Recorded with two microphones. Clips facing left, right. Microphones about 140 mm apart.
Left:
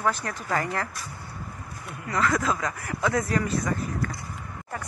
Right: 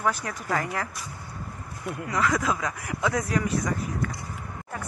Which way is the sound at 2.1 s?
10° right (ahead or behind).